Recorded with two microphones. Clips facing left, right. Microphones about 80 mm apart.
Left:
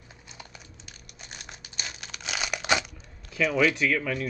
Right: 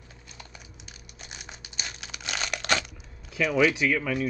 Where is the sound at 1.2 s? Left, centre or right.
Centre.